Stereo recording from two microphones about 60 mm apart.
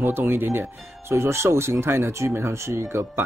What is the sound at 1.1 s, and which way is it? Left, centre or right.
Speech, right.